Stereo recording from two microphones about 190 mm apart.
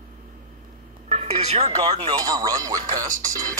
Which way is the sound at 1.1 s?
35° right (ahead or behind).